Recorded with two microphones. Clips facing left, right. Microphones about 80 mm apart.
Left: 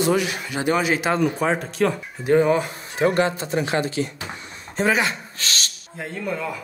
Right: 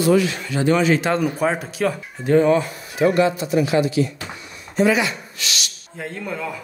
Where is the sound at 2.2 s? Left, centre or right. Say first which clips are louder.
Right 2 dB; centre.